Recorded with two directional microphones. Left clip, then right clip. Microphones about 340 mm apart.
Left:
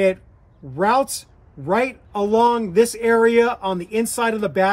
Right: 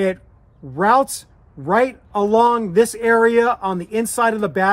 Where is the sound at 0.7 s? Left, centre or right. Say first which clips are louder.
Right 3 dB; centre.